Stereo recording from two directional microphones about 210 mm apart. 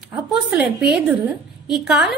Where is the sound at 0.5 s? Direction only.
5° right (ahead or behind).